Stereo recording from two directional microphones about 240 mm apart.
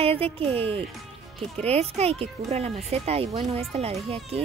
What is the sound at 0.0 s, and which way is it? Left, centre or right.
A child's voice, right.